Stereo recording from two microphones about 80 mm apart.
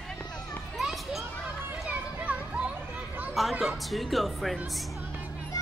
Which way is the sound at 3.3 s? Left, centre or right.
Centre.